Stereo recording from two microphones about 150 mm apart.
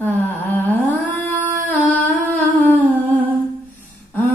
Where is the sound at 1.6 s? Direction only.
10° left (ahead or behind).